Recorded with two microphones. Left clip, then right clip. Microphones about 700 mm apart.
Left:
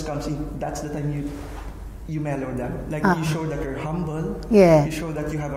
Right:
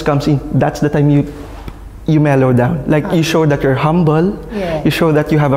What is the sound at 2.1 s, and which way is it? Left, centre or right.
A man's voice, right.